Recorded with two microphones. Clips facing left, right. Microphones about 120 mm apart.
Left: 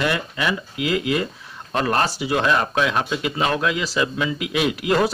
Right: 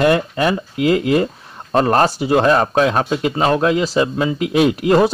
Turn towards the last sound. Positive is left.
turn(degrees=-35)  # may be behind; listen again after turning